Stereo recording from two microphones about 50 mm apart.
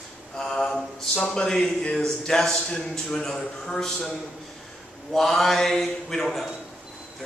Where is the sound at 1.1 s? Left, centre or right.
Centre.